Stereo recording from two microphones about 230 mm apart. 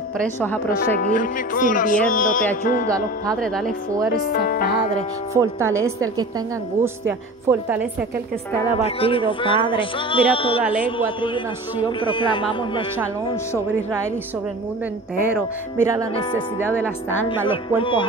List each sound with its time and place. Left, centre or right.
0.2 s a woman's voice: centre
0.7 s speech: left
2.9 s speech: centre
4.1 s speech: left
5.3 s a woman's voice: centre
8.8 s speech: left
10.6 s a woman's voice: centre
11.1 s speech: left
15.3 s a woman's voice: centre
16.2 s speech: left
16.7 s a woman's voice: centre
17.5 s speech: left